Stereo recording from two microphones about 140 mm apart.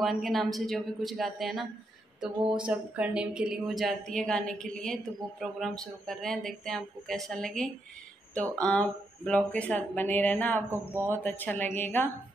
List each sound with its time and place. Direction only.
0.0 s speech: centre (ahead or behind)
10.7 s speech: 15° right (ahead or behind)
11.2 s speech: 15° left (ahead or behind)